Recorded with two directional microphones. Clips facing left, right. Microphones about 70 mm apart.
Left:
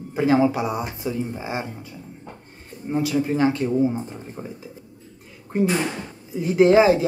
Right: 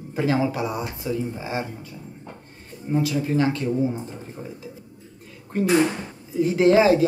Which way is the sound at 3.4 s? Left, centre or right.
Left.